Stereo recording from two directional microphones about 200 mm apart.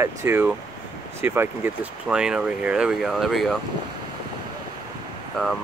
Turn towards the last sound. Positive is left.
turn(degrees=0)  # may be behind; listen again after turning